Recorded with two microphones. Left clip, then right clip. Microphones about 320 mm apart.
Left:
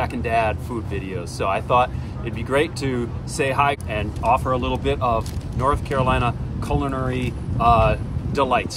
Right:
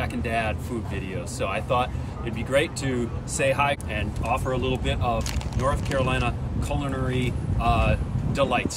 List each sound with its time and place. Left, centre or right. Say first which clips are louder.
0.0 s speech: left 6 dB; centre